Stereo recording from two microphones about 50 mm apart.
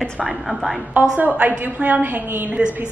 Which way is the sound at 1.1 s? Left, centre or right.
Right.